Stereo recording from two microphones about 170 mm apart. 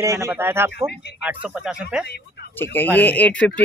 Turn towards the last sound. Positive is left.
turn(degrees=10)  # may be behind; listen again after turning